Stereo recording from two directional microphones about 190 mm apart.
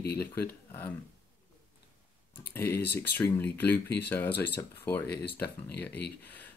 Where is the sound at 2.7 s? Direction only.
60° left (ahead or behind).